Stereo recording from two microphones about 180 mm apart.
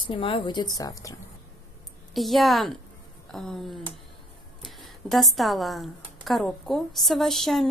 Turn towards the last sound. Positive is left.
turn(degrees=0)  # may be behind; listen again after turning